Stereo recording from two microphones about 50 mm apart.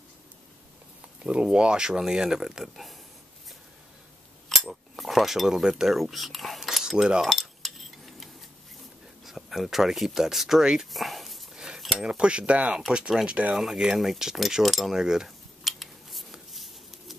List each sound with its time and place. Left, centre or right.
1.2 s speech: centre
4.5 s cutlery: centre
5.9 s speech: centre
6.8 s cutlery: centre
7.2 s cutlery: centre
9.2 s speech: centre
10.9 s a sound: centre
11.5 s cutlery: centre
12.1 s speech: right
12.9 s speech: centre
13.3 s speech: right
13.6 s speech: centre
15.0 s speech: centre
15.2 s scissors: centre